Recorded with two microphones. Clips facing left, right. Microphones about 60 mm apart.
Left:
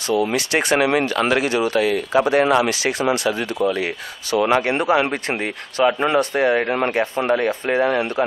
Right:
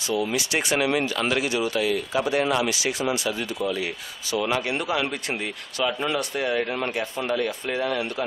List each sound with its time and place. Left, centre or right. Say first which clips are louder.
0.0 s speech: left 6 dB; left